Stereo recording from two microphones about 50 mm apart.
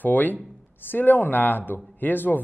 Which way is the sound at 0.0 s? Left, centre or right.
Left.